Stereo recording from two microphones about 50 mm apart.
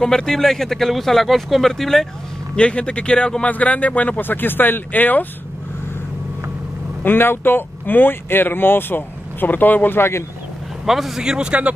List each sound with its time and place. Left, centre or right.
0.0 s speech: centre
2.5 s speech: left
3.4 s speech: left
4.2 s speech: left
7.0 s speech: left
10.9 s speech: centre; by 11.7 s right